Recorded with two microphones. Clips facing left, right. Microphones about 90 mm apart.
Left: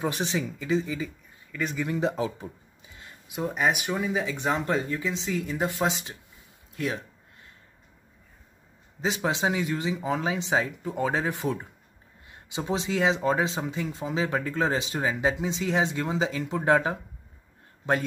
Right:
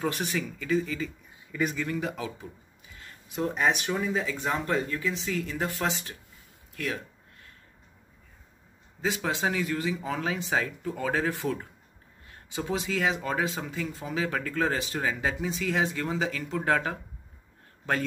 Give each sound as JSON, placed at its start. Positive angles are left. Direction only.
{"t": 0.0, "sound": "speech", "side_deg": 20}
{"t": 1.5, "sound": "speech", "side_deg": -10}
{"t": 1.8, "sound": "speech", "side_deg": 25}
{"t": 3.0, "sound": "speech", "side_deg": 10}
{"t": 6.7, "sound": "a sound", "side_deg": 20}
{"t": 9.0, "sound": "speech", "side_deg": 20}